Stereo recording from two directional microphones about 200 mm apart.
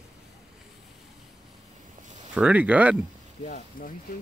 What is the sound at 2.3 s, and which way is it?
Speech, 5° right (ahead or behind).